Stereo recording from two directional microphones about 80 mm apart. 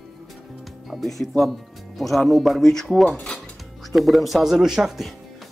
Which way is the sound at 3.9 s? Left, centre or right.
Centre.